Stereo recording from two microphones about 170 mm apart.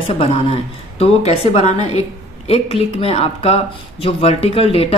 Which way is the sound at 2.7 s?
35° left (ahead or behind).